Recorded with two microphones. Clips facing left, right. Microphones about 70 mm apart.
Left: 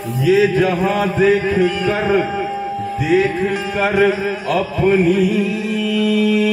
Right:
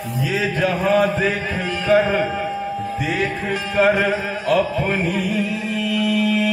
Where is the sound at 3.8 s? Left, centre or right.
Centre.